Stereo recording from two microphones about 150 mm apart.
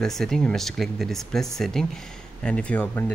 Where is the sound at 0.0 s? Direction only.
5° left (ahead or behind).